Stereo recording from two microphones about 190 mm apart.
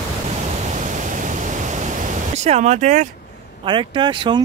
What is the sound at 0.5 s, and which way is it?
Pink noise, 40° right (ahead or behind).